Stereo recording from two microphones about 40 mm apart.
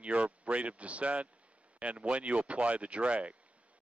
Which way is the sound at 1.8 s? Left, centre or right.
Right.